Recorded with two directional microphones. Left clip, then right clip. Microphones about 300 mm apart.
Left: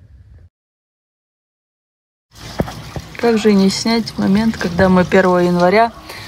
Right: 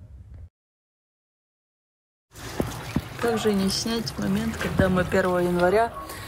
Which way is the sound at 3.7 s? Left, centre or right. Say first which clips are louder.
Left 10 dB; left.